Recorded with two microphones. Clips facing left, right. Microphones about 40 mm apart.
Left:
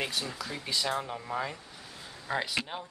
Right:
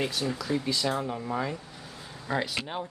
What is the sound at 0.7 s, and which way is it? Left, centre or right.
Speech, centre.